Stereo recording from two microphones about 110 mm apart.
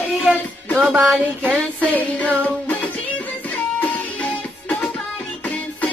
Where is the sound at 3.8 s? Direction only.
15° left (ahead or behind).